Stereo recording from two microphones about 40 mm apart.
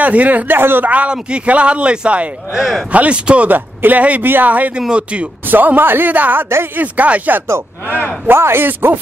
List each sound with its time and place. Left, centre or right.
0.0 s speech: right
0.5 s a man's voice: right
0.8 s speech: right
2.5 s speech: centre
2.9 s speech: right
3.4 s speech: right
4.2 s a man's voice: right
4.5 s speech: right
4.7 s speech: right
5.4 s speech: right
6.5 s a man's voice: right
6.8 s speech: right
7.8 s speech: left
8.3 s speech: right